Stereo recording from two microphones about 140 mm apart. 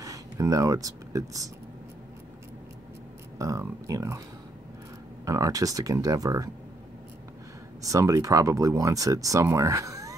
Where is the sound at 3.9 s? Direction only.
20° right (ahead or behind).